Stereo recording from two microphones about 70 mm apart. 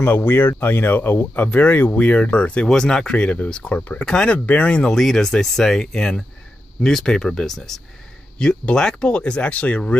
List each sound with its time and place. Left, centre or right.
0.0 s speech: left
4.9 s speech: centre